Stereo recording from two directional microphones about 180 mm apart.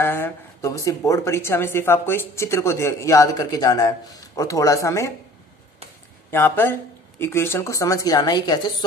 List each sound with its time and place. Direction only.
0.0 s speech: 10° left (ahead or behind)
6.3 s speech: 10° left (ahead or behind)